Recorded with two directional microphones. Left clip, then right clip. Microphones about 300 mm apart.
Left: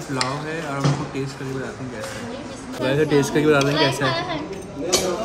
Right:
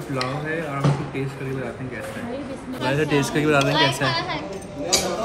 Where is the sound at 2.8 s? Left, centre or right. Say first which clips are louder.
Left 3 dB; centre.